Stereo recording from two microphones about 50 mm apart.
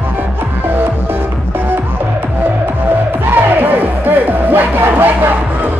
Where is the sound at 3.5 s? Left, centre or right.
Right.